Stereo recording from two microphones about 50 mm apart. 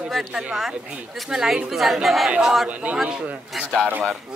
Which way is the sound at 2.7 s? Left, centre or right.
Right.